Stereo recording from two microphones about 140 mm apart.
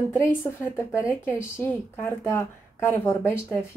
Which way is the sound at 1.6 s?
10° left (ahead or behind).